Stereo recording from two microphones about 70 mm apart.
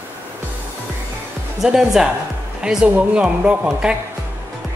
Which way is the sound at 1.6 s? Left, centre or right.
Centre.